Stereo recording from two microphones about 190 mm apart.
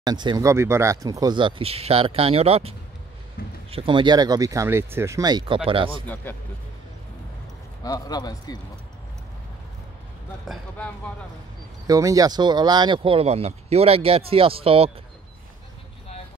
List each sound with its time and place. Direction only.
0.0 s speech: 20° right (ahead or behind)
3.4 s a sound: 50° left (ahead or behind)
3.7 s speech: 25° right (ahead or behind)
6.2 s speech: 10° left (ahead or behind)
7.8 s a man's voice: 20° left (ahead or behind)
10.4 s speech: centre (ahead or behind)
11.9 s speech: 20° right (ahead or behind)